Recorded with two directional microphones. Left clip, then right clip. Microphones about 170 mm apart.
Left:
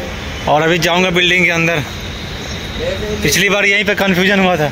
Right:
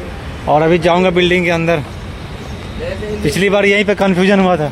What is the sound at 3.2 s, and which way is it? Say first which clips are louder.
Speech: even; 10° right (ahead or behind).